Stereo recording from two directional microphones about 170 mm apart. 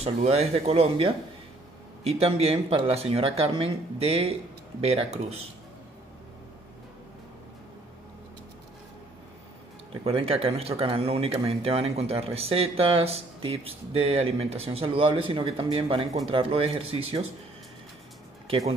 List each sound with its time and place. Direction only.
0.0 s speech: 40° right (ahead or behind)
10.0 s speech: 35° right (ahead or behind)